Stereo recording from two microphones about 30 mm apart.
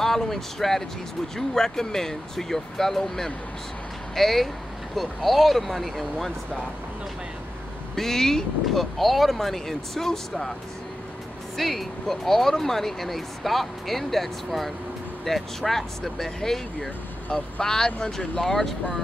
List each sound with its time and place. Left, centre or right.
0.0 s speech: centre
7.9 s speech: centre
8.7 s speech: centre
11.5 s speech: centre
17.3 s speech: left
18.4 s speech: centre